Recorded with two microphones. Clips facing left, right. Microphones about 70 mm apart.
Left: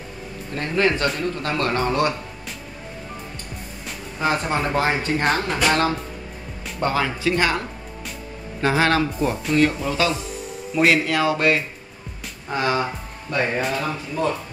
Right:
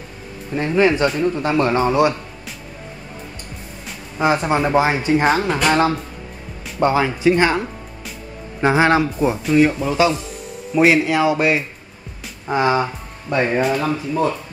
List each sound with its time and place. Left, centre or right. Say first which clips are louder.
0.6 s speech: right 5 dB; centre
4.2 s speech: right 5 dB; centre
9.0 s speech: right 4 dB; centre